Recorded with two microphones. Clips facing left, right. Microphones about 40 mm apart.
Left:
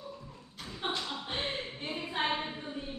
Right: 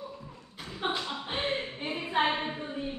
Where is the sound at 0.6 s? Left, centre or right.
Centre.